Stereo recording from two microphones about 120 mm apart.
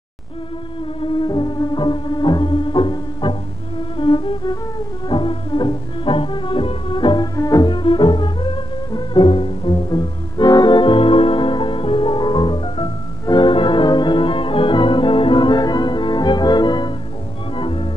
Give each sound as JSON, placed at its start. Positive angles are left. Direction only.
{"t": 1.0, "sound": "music", "side_deg": 40}
{"t": 7.3, "sound": "music", "side_deg": 30}
{"t": 17.6, "sound": "organ", "side_deg": 50}